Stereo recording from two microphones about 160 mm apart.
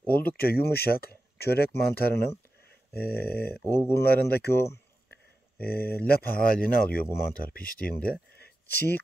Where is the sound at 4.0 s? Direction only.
85° left.